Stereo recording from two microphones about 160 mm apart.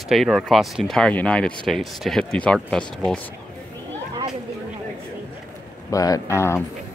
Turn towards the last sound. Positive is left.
turn(degrees=15)  # may be behind; listen again after turning